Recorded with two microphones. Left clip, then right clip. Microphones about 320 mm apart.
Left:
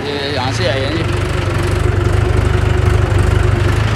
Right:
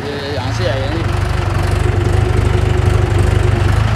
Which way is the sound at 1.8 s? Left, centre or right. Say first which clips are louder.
Left 1 dB; centre.